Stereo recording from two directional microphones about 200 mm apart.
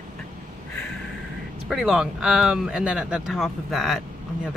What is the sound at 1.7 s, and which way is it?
Speech, 5° right (ahead or behind).